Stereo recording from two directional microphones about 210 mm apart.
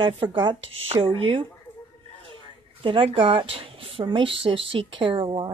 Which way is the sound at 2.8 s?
25° right (ahead or behind).